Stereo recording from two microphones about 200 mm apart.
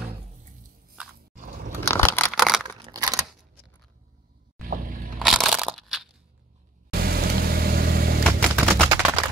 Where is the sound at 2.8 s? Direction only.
20° right (ahead or behind).